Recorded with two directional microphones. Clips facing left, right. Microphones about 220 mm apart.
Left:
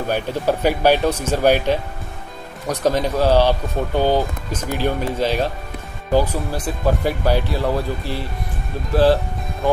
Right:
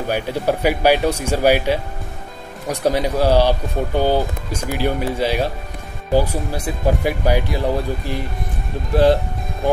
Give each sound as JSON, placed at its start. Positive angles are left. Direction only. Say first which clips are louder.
{"t": 0.1, "sound": "speech", "louder": "right 1 dB", "side_deg": -10}